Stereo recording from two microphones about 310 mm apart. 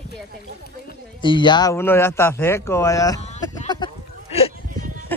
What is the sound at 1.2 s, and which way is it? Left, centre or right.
Speech, centre.